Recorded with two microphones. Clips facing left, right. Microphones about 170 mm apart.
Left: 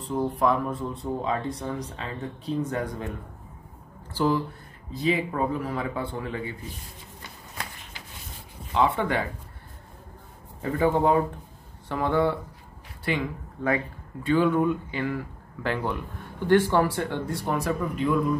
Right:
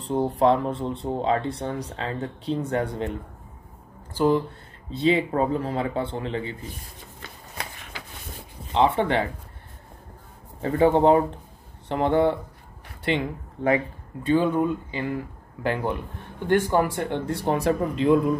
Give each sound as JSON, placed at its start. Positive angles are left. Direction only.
{"t": 0.0, "sound": "speech", "side_deg": -30}
{"t": 4.9, "sound": "speech", "side_deg": -30}
{"t": 8.7, "sound": "speech", "side_deg": -25}
{"t": 10.6, "sound": "speech", "side_deg": -25}
{"t": 13.6, "sound": "speech", "side_deg": -20}
{"t": 17.5, "sound": "speech", "side_deg": -30}